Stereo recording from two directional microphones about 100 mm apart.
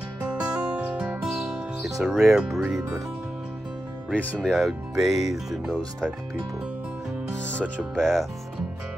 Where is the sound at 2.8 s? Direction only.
35° right (ahead or behind).